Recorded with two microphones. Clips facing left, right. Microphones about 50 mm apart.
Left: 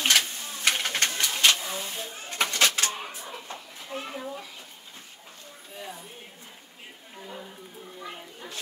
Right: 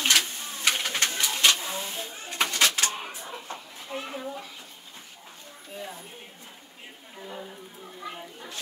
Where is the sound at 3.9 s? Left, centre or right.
Centre.